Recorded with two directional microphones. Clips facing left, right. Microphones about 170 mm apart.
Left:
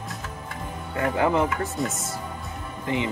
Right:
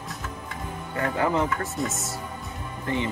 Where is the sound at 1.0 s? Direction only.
15° left (ahead or behind).